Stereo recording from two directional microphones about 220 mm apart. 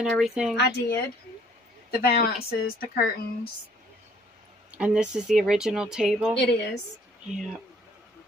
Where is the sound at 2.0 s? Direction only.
45° left (ahead or behind).